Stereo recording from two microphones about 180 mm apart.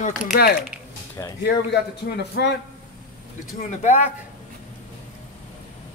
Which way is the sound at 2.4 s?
65° left (ahead or behind).